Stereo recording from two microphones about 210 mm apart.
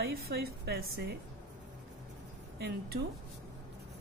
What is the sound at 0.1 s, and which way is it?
A woman's voice, 45° right (ahead or behind).